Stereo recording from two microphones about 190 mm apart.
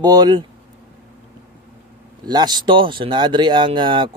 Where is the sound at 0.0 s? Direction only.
20° right (ahead or behind).